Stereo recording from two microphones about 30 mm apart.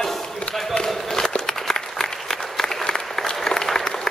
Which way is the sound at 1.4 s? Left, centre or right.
Centre.